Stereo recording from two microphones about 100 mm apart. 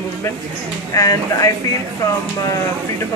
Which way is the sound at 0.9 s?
35° left (ahead or behind).